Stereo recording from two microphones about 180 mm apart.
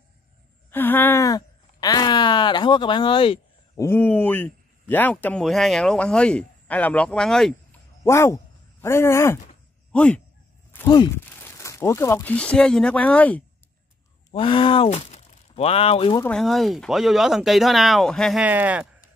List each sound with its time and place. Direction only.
0.7 s a sound: 10° left (ahead or behind); by 3.3 s 30° left (ahead or behind)
3.7 s speech: 15° left (ahead or behind)
8.0 s speech: 15° left (ahead or behind)
11.2 s speech: 10° left (ahead or behind)
14.3 s speech: 30° left (ahead or behind)
16.3 s speech: centre (ahead or behind)